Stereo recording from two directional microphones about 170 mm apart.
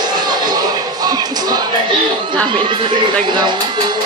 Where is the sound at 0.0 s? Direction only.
25° right (ahead or behind).